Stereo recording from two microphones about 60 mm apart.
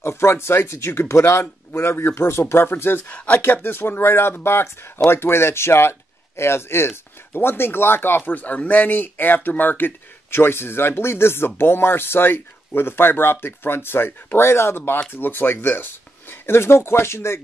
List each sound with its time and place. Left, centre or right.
0.0 s speech: left
3.1 s speech: left
8.3 s speech: left